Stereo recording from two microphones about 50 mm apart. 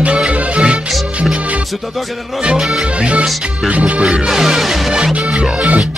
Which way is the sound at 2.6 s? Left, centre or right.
Centre.